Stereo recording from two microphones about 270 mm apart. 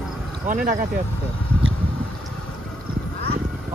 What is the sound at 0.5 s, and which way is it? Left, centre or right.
Speech, right.